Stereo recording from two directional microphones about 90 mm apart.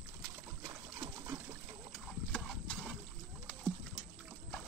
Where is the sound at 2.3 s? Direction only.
5° left (ahead or behind).